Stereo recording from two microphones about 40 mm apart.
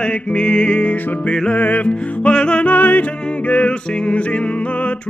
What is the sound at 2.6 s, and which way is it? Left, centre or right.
Music, left.